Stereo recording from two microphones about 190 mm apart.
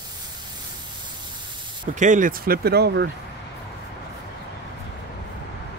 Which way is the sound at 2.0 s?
40° right (ahead or behind).